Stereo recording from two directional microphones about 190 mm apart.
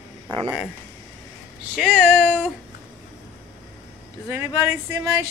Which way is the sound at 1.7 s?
5° left (ahead or behind).